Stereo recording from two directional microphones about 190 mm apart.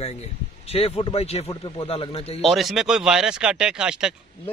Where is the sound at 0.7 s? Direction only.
30° left (ahead or behind).